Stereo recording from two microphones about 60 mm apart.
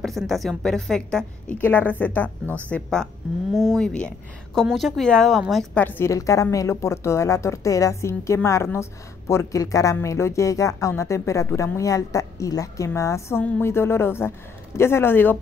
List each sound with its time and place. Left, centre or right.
0.0 s a woman's voice: centre
1.6 s a woman's voice: left
3.5 s a woman's voice: centre
3.8 s speech: centre
4.6 s a woman's voice: centre
5.8 s a woman's voice: left
6.0 s speech: left
13.6 s speech: left